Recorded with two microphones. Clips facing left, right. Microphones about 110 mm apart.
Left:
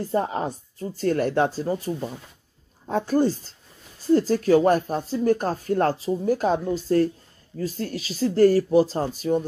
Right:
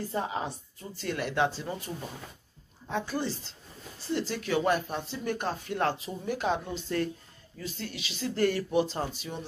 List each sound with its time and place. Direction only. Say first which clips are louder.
0.1 s speech: left 9 dB; 45° left (ahead or behind)
2.9 s speech: left 10 dB; 45° left (ahead or behind)